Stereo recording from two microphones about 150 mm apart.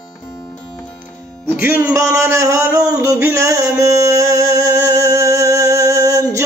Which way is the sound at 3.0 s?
20° right (ahead or behind).